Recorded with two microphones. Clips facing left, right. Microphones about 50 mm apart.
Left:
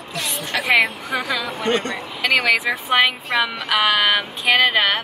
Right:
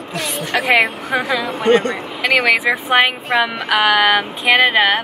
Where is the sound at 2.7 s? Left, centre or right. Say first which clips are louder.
Right 3 dB; centre.